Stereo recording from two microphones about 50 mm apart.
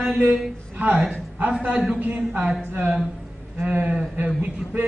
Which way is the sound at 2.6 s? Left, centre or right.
Right.